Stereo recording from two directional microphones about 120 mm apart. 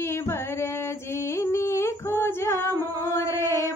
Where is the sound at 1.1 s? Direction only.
25° left (ahead or behind).